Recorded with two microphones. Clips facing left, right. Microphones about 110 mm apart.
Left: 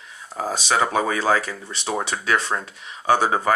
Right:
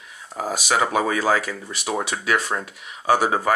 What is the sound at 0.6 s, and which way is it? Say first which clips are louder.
Speech: even; 30° left (ahead or behind).